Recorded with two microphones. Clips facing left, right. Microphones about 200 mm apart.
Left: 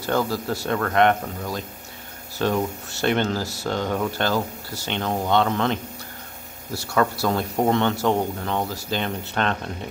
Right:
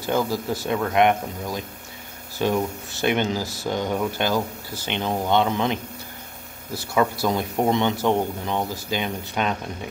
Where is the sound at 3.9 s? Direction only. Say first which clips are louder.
Even; 5° right (ahead or behind).